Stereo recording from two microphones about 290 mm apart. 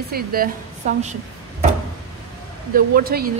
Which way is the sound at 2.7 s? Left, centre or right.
Right.